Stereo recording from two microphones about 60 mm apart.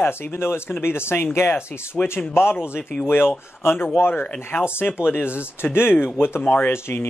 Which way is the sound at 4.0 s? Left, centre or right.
Left.